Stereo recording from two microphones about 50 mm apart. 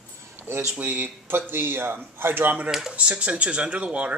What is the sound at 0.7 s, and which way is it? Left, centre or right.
A man's voice, right.